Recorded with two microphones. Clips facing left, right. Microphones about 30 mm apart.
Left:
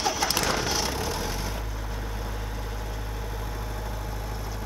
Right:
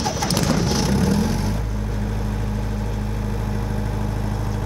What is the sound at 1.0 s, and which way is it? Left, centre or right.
Vehicle, centre.